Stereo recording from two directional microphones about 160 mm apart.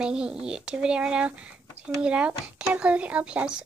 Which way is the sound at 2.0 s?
5° right (ahead or behind).